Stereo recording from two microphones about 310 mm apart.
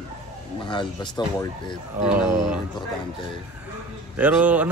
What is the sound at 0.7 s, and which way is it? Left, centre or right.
Speech, centre.